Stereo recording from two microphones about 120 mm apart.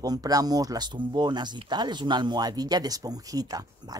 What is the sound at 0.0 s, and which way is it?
Speech, 30° right (ahead or behind).